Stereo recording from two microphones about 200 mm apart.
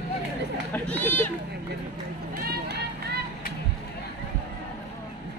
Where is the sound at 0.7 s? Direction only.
10° left (ahead or behind).